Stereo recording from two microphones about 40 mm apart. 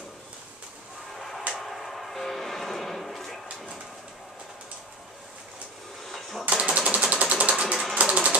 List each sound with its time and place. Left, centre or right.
1.1 s a sound: centre
1.5 s music: centre
6.0 s a sound: centre
6.4 s typewriter: right
7.1 s sewing machine: right
8.0 s ratchet: right